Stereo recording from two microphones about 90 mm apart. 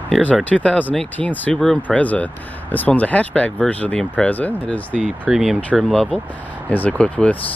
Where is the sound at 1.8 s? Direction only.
15° left (ahead or behind).